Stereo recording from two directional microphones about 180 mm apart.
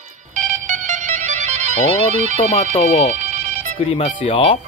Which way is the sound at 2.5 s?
30° left (ahead or behind).